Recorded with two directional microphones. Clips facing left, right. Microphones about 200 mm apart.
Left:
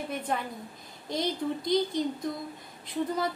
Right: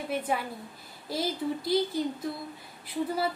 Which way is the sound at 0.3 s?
5° right (ahead or behind).